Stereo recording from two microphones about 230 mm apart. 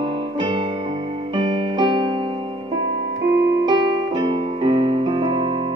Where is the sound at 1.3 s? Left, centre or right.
Centre.